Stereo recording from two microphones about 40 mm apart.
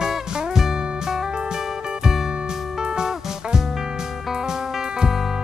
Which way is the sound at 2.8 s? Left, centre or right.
Centre.